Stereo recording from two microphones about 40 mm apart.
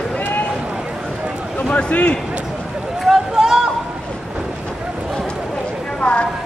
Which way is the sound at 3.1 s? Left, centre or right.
Centre.